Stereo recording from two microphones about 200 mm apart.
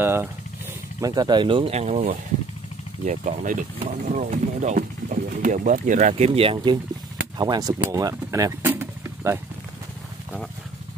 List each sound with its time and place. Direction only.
0.0 s speech: 10° right (ahead or behind)